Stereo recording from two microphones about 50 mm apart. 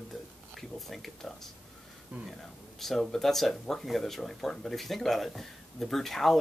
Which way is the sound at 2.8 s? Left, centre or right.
Centre.